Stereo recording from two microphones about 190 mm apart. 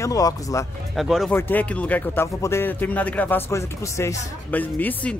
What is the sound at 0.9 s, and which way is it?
Speech, centre (ahead or behind).